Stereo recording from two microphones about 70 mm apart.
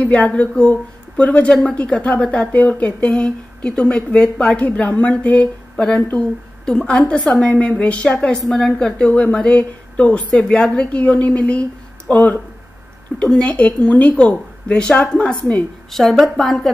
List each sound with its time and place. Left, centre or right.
0.0 s a woman's voice: centre
15.9 s a woman's voice: centre